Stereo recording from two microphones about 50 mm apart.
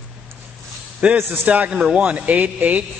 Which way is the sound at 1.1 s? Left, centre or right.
Right.